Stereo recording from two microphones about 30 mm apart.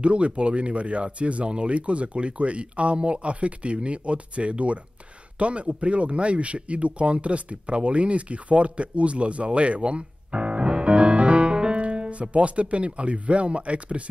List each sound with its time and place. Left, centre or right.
0.0 s speech: right